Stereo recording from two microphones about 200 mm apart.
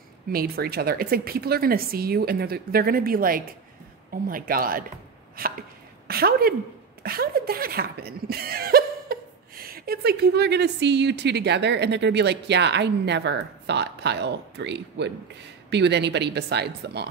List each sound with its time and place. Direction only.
0.3 s speech: 50° right (ahead or behind)
5.3 s chopping: 50° right (ahead or behind)
7.0 s speech: 50° right (ahead or behind)